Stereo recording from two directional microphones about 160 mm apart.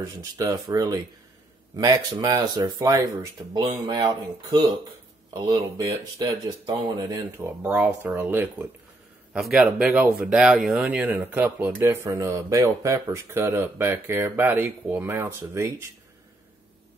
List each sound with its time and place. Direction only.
0.0 s speech: 20° right (ahead or behind)
9.3 s speech: 5° right (ahead or behind)